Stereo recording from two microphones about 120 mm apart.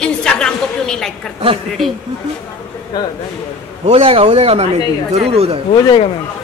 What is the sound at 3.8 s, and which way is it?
Speech, 50° right (ahead or behind).